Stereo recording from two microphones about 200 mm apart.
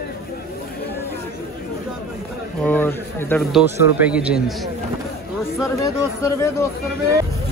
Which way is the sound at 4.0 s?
5° right (ahead or behind).